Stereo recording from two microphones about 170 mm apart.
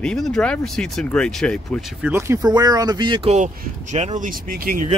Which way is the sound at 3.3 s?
45° right (ahead or behind).